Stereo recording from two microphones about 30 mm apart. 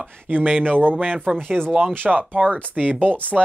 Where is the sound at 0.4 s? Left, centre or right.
Right.